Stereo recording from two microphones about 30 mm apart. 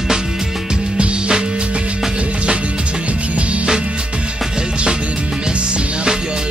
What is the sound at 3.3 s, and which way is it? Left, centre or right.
Music, right.